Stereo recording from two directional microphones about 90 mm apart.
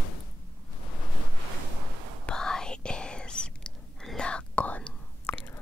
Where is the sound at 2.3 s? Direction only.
5° left (ahead or behind).